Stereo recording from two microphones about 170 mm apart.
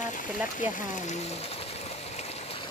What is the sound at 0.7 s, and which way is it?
Speech, 50° left (ahead or behind).